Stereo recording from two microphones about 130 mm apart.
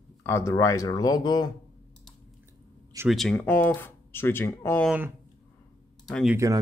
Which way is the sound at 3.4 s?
15° left (ahead or behind).